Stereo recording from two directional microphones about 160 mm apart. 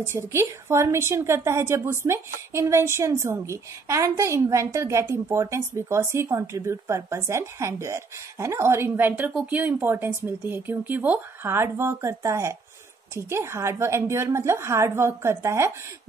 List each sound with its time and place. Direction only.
0.0 s a woman's voice: 15° right (ahead or behind)